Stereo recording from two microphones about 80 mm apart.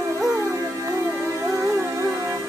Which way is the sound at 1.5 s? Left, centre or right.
Right.